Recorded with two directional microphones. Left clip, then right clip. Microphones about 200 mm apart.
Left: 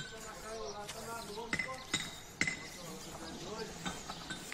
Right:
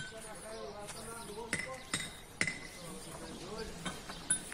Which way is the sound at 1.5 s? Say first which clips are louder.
Left 2 dB; 45° right (ahead or behind).